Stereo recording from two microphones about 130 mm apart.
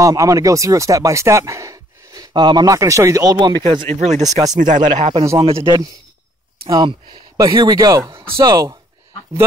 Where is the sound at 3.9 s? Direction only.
60° right (ahead or behind).